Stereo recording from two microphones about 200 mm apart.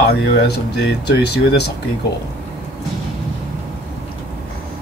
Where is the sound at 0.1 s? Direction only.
55° left (ahead or behind).